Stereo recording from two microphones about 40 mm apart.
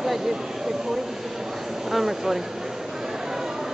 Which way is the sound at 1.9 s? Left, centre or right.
Centre.